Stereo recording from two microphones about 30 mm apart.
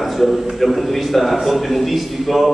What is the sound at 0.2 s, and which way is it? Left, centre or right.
A man's voice, centre.